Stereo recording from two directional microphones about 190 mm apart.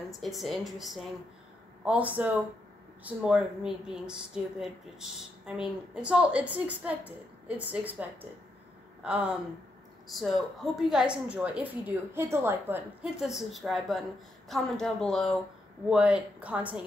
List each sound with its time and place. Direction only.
0.2 s speech: centre (ahead or behind)